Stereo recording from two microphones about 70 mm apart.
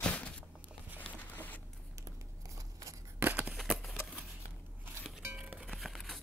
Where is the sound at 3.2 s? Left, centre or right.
Right.